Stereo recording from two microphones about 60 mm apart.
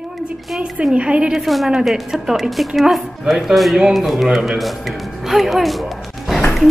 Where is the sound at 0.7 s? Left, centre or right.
Centre.